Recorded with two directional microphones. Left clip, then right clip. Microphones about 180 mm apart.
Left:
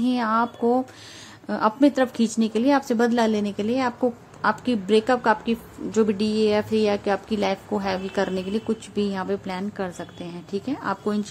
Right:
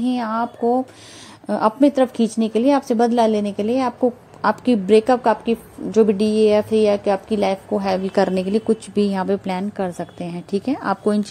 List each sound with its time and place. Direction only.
0.0 s a woman's voice: 10° right (ahead or behind); by 11.2 s 30° right (ahead or behind)